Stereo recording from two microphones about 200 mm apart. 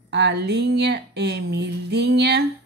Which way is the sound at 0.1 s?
55° right (ahead or behind).